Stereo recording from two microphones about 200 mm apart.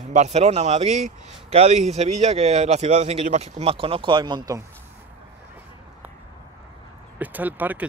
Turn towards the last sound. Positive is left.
turn(degrees=-10)  # may be behind; listen again after turning